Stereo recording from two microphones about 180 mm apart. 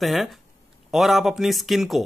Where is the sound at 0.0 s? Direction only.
Centre (ahead or behind).